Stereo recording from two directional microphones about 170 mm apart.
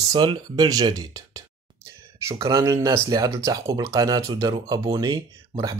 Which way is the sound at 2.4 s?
15° right (ahead or behind).